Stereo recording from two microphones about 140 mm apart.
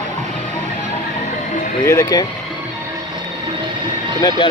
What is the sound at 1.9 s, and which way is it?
Speech, 25° left (ahead or behind).